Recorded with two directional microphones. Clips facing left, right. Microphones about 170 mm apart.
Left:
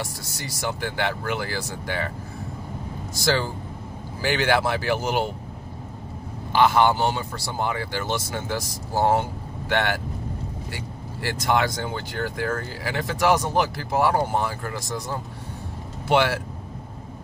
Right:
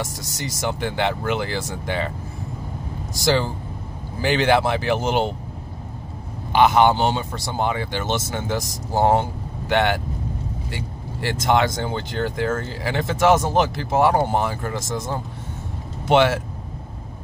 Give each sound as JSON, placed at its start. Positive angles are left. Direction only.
{"t": 0.0, "sound": "speech", "side_deg": -20}
{"t": 3.2, "sound": "speech", "side_deg": -20}
{"t": 6.5, "sound": "speech", "side_deg": -20}